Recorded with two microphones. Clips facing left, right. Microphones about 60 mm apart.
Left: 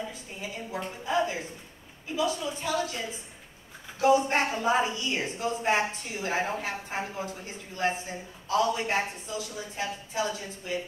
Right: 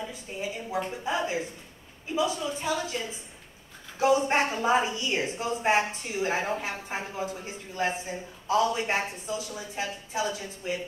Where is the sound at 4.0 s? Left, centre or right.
Right.